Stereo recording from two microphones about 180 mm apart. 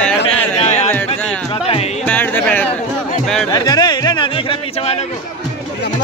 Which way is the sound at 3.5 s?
20° left (ahead or behind).